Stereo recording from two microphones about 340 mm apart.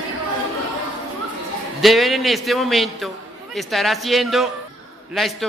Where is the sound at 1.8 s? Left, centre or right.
Centre.